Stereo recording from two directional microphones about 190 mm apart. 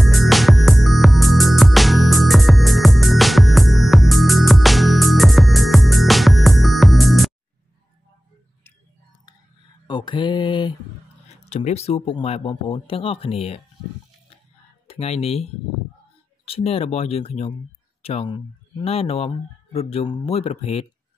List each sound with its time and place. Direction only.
0.0 s music: centre (ahead or behind)
9.8 s mantra: 25° left (ahead or behind)
11.4 s speech: 35° left (ahead or behind)
14.9 s speech: 35° left (ahead or behind)